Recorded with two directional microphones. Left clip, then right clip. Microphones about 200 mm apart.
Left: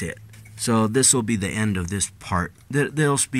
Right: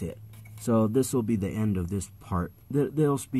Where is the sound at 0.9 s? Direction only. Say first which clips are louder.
Left 6 dB; 35° left (ahead or behind).